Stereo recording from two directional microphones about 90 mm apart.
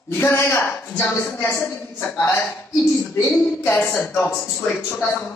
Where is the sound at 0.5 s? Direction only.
15° left (ahead or behind).